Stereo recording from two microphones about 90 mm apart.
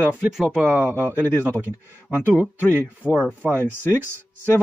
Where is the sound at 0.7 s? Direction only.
25° right (ahead or behind).